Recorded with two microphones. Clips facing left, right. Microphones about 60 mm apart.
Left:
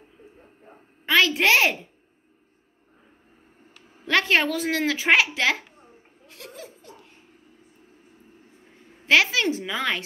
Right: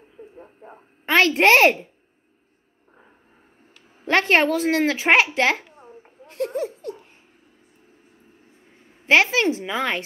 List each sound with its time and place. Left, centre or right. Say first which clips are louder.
1.0 s a child's voice: right 3 dB; right
4.0 s a child's voice: right 3 dB; right
6.2 s a sound: right 17 dB; right
6.5 s laughter: right 15 dB; right
9.0 s a child's voice: right 3 dB; right